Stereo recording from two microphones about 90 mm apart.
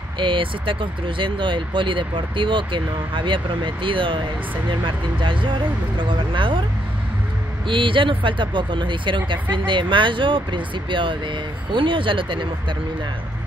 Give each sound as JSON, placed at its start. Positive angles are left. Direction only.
{"t": 0.2, "sound": "speech", "side_deg": -70}
{"t": 7.6, "sound": "speech", "side_deg": -70}